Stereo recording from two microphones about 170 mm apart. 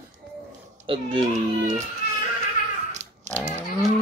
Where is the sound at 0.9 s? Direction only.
25° right (ahead or behind).